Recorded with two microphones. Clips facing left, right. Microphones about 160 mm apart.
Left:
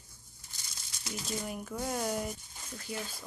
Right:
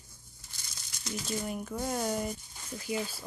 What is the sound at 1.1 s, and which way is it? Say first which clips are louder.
Speech: right 3 dB; centre (ahead or behind).